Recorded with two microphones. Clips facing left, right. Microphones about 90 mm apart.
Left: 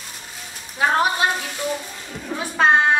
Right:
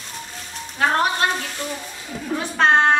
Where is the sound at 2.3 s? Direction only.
5° left (ahead or behind).